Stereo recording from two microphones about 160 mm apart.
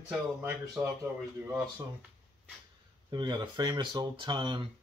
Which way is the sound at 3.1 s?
30° right (ahead or behind).